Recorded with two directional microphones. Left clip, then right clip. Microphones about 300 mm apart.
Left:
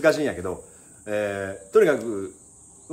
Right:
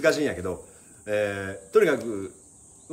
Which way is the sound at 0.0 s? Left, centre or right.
Centre.